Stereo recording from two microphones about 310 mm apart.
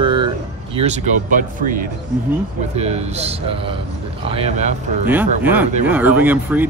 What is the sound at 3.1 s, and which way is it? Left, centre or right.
Speech, centre.